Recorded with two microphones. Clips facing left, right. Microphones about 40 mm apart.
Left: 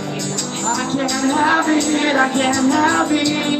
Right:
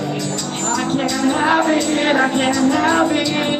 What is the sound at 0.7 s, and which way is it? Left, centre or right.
Music, centre.